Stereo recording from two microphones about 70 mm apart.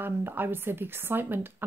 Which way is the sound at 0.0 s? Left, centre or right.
Right.